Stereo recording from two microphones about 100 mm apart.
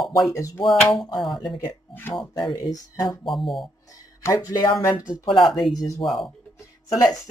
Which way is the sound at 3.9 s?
35° left (ahead or behind).